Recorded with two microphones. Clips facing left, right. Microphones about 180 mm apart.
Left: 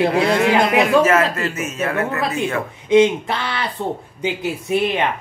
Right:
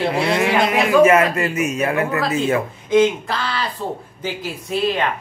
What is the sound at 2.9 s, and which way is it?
Speech, 20° left (ahead or behind).